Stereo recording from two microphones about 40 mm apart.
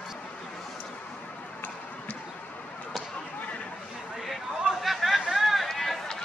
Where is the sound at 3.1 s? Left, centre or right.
Left.